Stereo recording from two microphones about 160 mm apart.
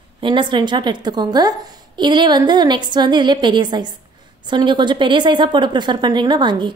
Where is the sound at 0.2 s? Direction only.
30° right (ahead or behind).